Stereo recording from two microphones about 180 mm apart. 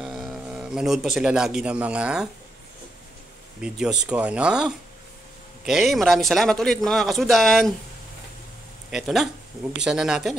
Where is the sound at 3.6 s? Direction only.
5° right (ahead or behind).